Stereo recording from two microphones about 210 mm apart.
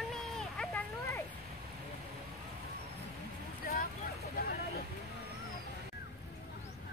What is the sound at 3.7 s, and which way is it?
Vehicle, 40° left (ahead or behind).